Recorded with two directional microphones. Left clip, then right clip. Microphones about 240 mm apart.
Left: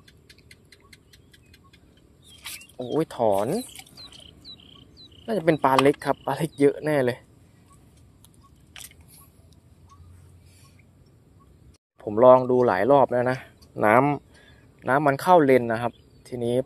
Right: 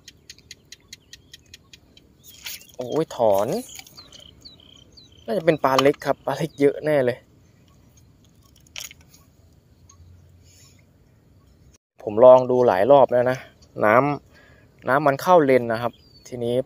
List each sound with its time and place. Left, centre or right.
0.0 s a sound: right
3.0 s speech: centre
5.2 s speech: centre
12.0 s speech: centre